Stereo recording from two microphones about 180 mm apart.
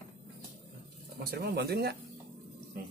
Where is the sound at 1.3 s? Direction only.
60° right (ahead or behind).